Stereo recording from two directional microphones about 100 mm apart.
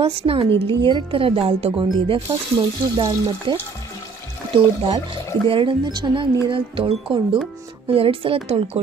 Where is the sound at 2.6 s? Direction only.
40° right (ahead or behind).